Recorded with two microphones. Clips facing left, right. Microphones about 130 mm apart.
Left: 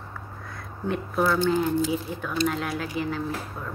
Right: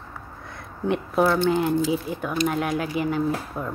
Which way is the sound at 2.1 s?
5° right (ahead or behind).